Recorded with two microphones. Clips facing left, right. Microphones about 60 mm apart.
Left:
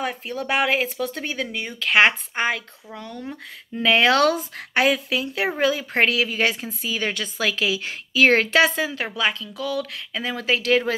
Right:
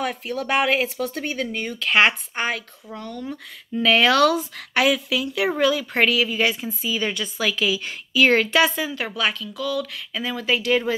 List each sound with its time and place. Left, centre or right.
0.3 s speech: right
1.0 s speech: left
3.7 s a woman's voice: left